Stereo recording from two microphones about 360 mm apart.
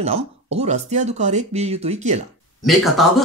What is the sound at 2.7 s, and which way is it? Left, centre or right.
Speech, centre.